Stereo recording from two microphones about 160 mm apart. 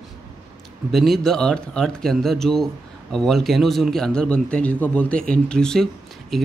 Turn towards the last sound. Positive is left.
turn(degrees=0)  # may be behind; listen again after turning